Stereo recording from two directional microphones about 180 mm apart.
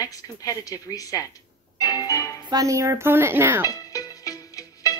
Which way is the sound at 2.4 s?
20° right (ahead or behind).